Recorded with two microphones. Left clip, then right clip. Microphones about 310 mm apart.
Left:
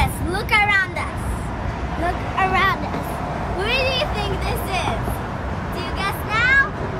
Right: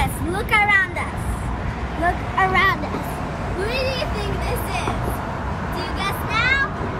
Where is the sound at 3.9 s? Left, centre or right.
Centre.